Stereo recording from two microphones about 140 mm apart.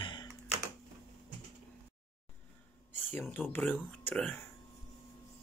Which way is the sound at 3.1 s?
15° left (ahead or behind).